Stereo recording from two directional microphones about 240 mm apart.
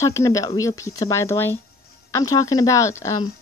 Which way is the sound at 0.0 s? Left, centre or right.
Centre.